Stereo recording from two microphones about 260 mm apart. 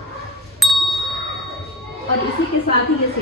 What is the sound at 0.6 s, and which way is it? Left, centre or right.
Ding, centre.